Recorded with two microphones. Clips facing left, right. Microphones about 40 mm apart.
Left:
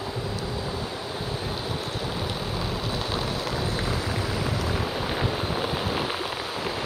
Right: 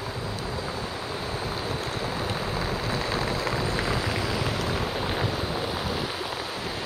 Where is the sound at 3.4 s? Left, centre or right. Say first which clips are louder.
Right 1 dB; right.